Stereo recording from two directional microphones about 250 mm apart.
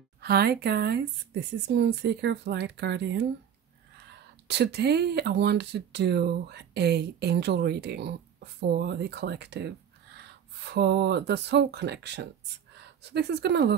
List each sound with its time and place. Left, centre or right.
0.2 s speech: right